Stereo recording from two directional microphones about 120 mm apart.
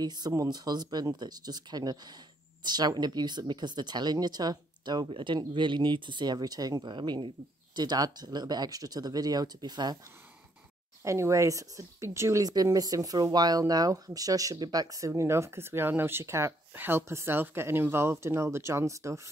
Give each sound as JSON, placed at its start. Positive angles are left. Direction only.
{"t": 0.0, "sound": "speech", "side_deg": -35}
{"t": 11.1, "sound": "a woman's voice", "side_deg": -25}